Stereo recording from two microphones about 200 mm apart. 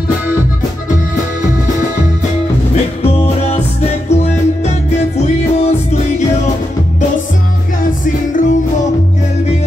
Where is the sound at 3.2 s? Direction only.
30° left (ahead or behind).